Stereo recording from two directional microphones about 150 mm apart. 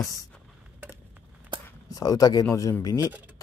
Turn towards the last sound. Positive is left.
turn(degrees=20)  # may be behind; listen again after turning